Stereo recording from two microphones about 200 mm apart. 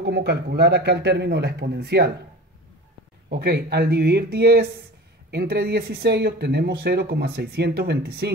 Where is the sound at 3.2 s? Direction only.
50° right (ahead or behind).